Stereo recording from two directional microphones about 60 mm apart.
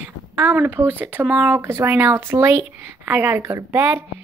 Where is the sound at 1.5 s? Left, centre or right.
Right.